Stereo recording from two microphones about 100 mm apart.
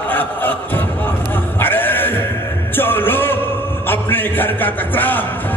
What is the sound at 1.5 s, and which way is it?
Bleat, 20° left (ahead or behind).